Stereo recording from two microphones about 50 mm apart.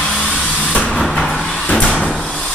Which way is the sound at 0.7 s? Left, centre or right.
Left.